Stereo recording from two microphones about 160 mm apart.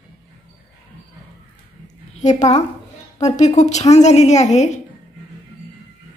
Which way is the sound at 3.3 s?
45° left (ahead or behind).